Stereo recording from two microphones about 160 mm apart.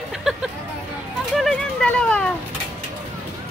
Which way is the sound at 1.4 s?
5° left (ahead or behind).